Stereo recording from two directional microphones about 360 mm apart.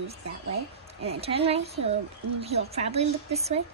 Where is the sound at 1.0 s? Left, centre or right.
Centre.